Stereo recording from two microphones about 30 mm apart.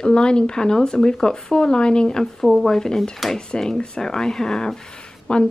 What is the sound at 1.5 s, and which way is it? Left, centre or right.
Speech, left.